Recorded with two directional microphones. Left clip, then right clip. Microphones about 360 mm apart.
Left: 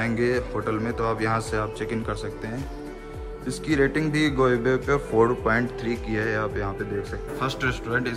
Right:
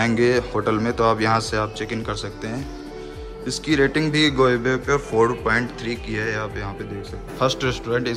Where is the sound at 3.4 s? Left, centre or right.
Centre.